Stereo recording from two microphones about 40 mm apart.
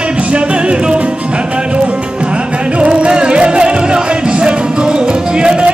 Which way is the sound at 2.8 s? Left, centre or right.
Right.